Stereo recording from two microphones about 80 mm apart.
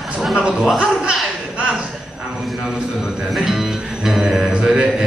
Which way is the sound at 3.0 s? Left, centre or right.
Centre.